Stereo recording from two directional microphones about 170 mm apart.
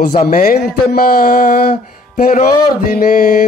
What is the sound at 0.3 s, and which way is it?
Mantra, 60° left (ahead or behind).